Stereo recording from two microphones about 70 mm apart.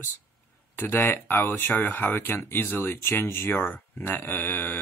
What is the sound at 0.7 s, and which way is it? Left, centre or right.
Speech, left.